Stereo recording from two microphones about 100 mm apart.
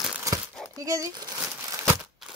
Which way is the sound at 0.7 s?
35° right (ahead or behind).